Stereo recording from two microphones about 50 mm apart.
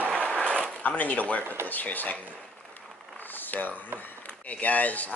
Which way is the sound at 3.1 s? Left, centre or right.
Left.